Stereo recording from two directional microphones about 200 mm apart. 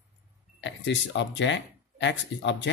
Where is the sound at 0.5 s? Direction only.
65° left (ahead or behind).